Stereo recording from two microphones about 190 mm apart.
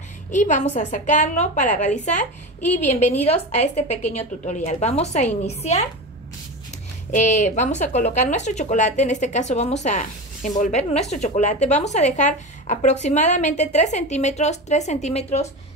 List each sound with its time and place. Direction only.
0.3 s speech: 40° left (ahead or behind)
7.2 s speech: 40° left (ahead or behind)